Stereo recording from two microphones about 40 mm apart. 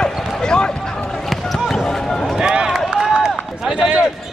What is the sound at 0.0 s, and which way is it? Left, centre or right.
Basketball bounce, centre.